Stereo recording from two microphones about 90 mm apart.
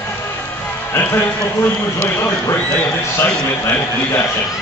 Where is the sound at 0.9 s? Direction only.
25° left (ahead or behind).